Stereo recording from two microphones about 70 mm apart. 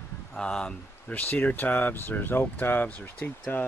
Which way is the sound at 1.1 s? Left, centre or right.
Left.